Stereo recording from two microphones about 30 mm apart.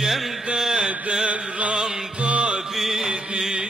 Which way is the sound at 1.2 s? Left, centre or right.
Right.